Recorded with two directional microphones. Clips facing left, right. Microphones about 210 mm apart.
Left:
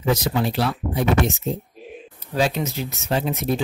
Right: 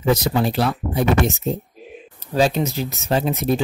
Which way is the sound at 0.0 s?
40° right (ahead or behind).